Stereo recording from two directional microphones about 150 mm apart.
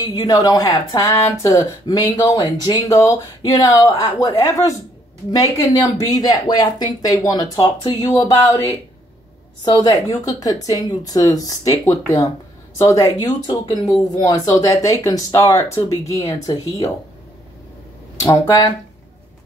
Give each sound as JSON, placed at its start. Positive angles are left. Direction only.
{"t": 0.0, "sound": "speech", "side_deg": 25}
{"t": 18.2, "sound": "speech", "side_deg": 25}